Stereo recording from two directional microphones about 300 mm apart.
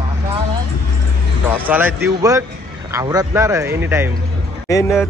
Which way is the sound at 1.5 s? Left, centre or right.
Centre.